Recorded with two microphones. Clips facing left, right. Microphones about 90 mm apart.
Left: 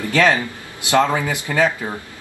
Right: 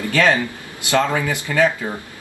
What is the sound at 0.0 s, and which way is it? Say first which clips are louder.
A man's voice: even; 20° left (ahead or behind).